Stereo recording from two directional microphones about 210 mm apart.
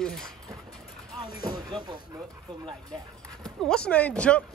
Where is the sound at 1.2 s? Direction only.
20° right (ahead or behind).